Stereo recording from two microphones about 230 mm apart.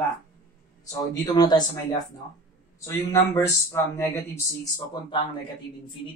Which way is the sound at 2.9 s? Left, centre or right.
Centre.